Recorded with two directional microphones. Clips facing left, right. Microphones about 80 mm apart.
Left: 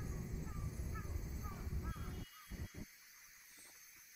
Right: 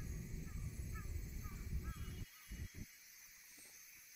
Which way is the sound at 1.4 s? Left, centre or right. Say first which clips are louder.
Left 4 dB; left.